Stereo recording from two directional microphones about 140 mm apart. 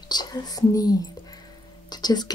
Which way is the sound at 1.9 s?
30° left (ahead or behind).